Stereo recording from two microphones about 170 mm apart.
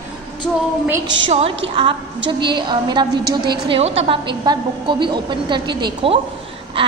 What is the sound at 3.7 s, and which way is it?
A woman's voice, 35° right (ahead or behind).